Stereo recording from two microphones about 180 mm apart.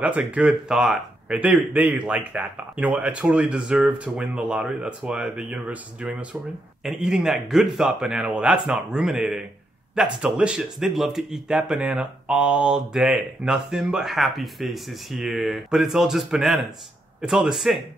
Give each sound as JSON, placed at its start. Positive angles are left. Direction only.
{"t": 0.0, "sound": "speech", "side_deg": -5}